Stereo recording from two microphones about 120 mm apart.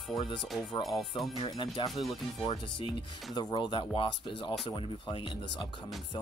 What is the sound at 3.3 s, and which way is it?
Speech, 40° left (ahead or behind).